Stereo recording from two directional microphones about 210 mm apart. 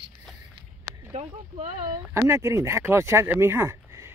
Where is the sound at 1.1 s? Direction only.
35° right (ahead or behind).